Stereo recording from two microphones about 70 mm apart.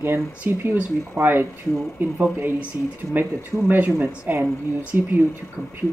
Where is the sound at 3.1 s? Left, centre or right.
Right.